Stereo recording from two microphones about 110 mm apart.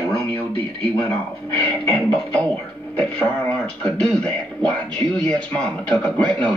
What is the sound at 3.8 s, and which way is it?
A man's voice, 10° left (ahead or behind).